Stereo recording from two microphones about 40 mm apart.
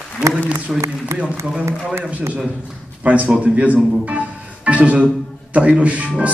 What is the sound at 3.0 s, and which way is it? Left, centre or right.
A man's voice, right.